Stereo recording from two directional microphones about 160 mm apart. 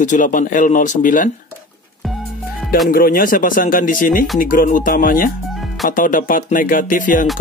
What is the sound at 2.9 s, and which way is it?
Speech, 65° left (ahead or behind).